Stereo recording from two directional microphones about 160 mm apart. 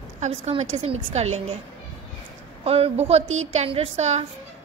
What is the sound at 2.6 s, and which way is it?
A woman's voice, 40° right (ahead or behind).